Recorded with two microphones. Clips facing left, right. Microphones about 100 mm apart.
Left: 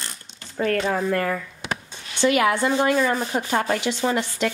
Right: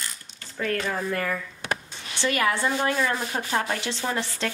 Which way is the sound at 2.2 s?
20° left (ahead or behind).